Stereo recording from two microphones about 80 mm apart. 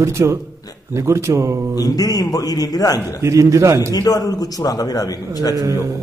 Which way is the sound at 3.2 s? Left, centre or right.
Right.